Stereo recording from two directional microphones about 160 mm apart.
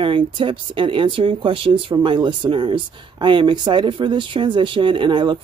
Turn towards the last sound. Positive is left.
turn(degrees=-30)  # may be behind; listen again after turning